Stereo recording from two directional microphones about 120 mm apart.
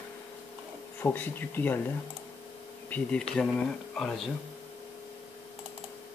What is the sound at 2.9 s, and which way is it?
Speech, 10° left (ahead or behind).